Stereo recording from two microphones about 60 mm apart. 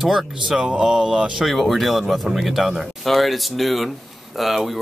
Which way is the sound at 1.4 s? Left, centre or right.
Centre.